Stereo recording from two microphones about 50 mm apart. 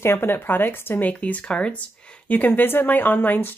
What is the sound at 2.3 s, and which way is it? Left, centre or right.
Speech, left.